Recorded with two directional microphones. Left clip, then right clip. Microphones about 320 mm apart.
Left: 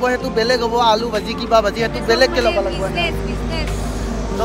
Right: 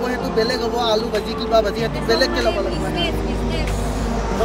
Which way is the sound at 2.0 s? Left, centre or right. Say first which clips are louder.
Left 4 dB; centre.